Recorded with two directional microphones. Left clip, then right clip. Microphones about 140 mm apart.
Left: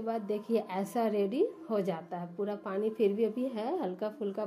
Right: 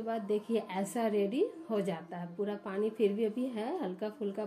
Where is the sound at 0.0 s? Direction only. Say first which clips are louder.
Even; 35° left (ahead or behind).